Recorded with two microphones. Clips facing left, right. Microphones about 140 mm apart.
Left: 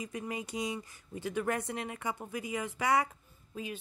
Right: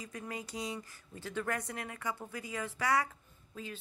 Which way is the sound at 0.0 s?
20° left (ahead or behind).